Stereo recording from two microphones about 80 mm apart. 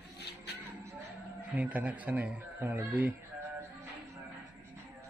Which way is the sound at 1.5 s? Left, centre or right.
Centre.